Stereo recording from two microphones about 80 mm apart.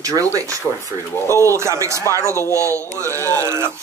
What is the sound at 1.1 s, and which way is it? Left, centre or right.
Speech, left.